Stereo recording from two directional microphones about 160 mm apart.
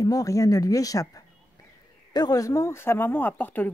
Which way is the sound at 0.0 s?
20° left (ahead or behind).